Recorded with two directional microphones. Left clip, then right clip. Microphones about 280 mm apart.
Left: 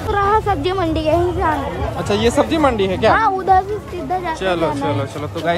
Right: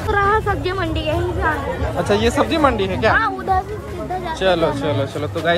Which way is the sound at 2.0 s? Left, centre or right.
Centre.